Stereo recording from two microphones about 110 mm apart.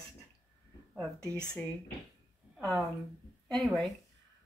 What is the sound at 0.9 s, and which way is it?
Speech, 5° left (ahead or behind).